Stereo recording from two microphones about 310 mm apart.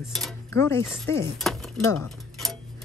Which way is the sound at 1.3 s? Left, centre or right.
Centre.